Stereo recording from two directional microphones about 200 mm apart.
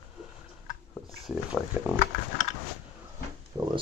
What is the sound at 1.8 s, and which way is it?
Speech, 10° right (ahead or behind).